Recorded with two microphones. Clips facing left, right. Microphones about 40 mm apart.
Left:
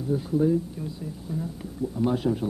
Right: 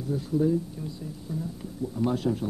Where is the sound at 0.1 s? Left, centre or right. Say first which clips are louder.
Left 2 dB; centre.